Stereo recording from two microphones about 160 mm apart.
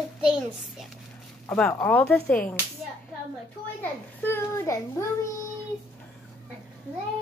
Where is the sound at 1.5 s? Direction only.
5° left (ahead or behind).